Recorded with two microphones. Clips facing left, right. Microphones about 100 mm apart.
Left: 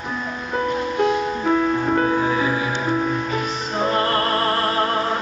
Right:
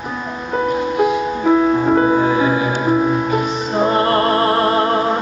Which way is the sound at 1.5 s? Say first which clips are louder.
Right 6 dB; 15° right (ahead or behind).